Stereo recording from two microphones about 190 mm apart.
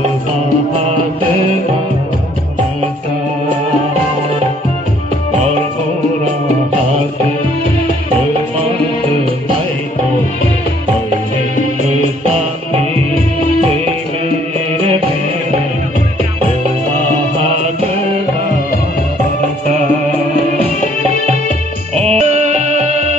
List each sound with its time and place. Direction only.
21.3 s music: 35° right (ahead or behind)